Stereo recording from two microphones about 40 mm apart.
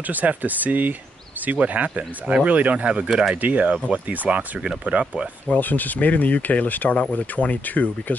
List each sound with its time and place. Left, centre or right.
0.0 s speech: right
3.1 s speech: centre
3.3 s speech: right
5.5 s speech: left